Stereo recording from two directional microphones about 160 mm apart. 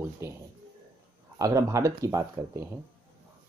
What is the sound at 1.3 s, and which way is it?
Speech, 20° right (ahead or behind).